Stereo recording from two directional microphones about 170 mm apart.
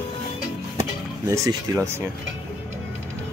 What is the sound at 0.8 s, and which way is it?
Music, 15° right (ahead or behind).